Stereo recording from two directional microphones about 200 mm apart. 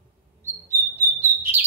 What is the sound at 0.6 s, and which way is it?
Bird, 10° right (ahead or behind).